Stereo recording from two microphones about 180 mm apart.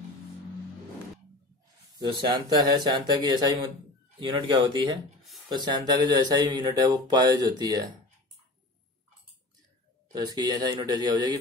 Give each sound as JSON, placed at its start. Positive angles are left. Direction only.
{"t": 2.0, "sound": "speech", "side_deg": -25}
{"t": 10.1, "sound": "speech", "side_deg": -20}